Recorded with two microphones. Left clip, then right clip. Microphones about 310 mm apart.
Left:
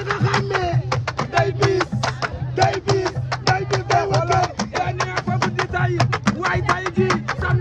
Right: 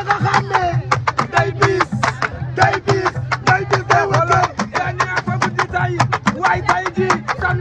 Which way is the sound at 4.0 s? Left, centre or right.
Right.